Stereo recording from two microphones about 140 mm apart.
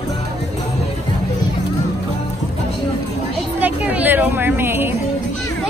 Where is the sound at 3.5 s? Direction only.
10° right (ahead or behind).